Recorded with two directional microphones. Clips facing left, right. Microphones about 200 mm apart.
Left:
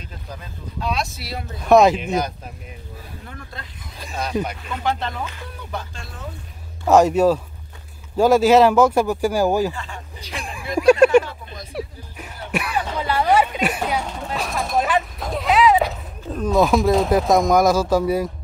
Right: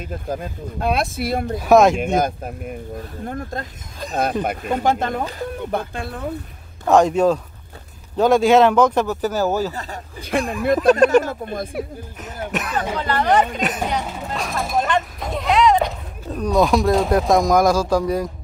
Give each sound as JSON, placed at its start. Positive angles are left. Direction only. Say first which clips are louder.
{"t": 0.0, "sound": "speech", "louder": "right 10 dB", "side_deg": -50}
{"t": 1.6, "sound": "speech", "louder": "even", "side_deg": 0}
{"t": 2.1, "sound": "speech", "louder": "right 4 dB", "side_deg": -50}
{"t": 6.9, "sound": "speech", "louder": "even", "side_deg": 5}
{"t": 9.7, "sound": "speech", "louder": "right 1 dB", "side_deg": -40}
{"t": 12.5, "sound": "speech", "louder": "even", "side_deg": 10}
{"t": 14.0, "sound": "speech", "louder": "even", "side_deg": -5}